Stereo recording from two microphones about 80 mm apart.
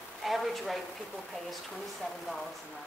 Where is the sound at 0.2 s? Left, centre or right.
Centre.